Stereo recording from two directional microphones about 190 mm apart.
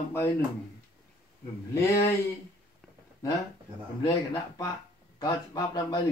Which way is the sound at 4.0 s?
20° left (ahead or behind).